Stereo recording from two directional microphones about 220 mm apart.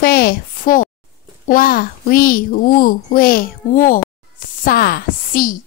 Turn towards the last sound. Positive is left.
turn(degrees=40)  # may be behind; listen again after turning